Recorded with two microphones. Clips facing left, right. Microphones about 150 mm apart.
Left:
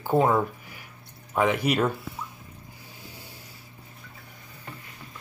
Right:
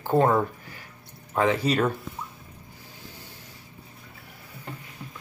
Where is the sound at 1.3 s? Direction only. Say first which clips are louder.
Even; 15° left (ahead or behind).